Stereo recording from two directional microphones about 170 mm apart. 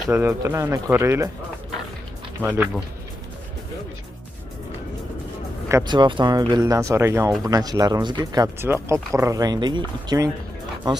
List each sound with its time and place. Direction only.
0.0 s speech: 10° right (ahead or behind)
2.4 s speech: 10° right (ahead or behind)
5.7 s speech: 20° right (ahead or behind)